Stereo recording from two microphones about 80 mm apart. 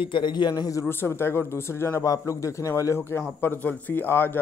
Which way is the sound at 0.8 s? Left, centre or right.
Left.